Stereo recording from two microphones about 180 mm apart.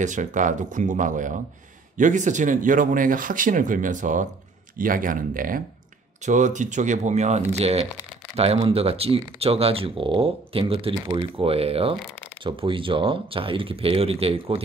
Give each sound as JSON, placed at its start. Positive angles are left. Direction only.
{"t": 0.0, "sound": "speech", "side_deg": -45}